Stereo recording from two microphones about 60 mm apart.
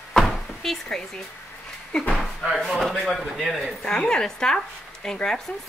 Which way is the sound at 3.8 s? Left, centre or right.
Centre.